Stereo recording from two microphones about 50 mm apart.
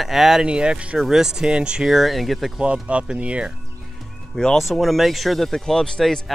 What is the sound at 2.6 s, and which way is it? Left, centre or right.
Speech, right.